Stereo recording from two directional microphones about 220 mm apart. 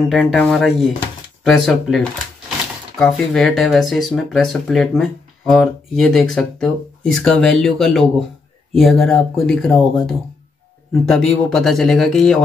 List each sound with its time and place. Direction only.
0.1 s speech: centre (ahead or behind)
3.0 s speech: 5° left (ahead or behind)